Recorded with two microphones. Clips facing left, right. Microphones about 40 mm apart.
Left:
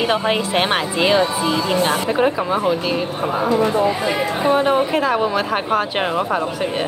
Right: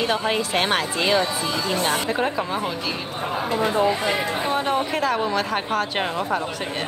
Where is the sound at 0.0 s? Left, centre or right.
Left.